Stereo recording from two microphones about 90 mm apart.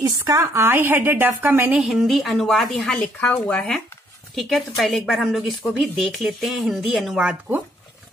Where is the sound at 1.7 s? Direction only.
5° right (ahead or behind).